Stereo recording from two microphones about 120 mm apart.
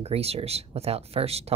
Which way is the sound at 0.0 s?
60° right (ahead or behind).